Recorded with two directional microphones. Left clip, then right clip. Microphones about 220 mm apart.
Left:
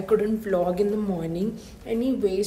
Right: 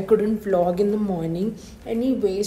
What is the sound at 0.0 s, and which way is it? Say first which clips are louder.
A woman's voice: right 3 dB; 5° left (ahead or behind).